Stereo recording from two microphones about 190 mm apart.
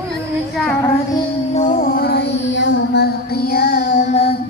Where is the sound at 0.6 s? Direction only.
5° left (ahead or behind).